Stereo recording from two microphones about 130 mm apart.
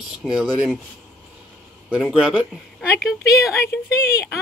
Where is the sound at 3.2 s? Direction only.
25° left (ahead or behind).